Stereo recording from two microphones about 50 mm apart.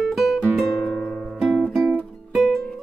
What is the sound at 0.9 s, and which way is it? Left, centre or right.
Music, centre.